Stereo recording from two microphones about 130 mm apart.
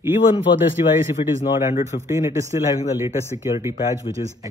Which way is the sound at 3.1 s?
55° left (ahead or behind).